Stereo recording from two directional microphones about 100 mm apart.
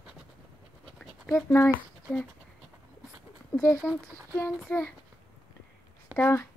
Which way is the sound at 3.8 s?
10° right (ahead or behind).